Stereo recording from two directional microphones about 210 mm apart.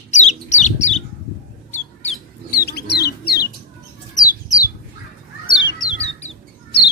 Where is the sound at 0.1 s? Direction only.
35° left (ahead or behind).